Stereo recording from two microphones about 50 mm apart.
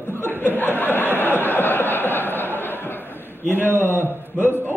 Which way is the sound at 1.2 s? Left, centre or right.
Left.